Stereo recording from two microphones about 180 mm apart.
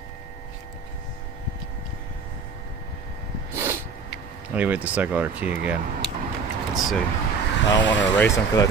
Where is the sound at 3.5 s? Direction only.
15° right (ahead or behind).